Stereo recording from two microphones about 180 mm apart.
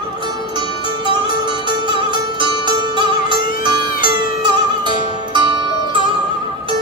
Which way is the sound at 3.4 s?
50° left (ahead or behind).